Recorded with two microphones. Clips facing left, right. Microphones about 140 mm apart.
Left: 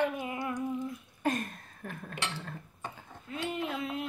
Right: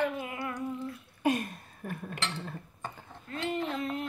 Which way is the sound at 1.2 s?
10° right (ahead or behind).